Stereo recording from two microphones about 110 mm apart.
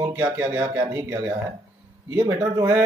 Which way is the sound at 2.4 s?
30° right (ahead or behind).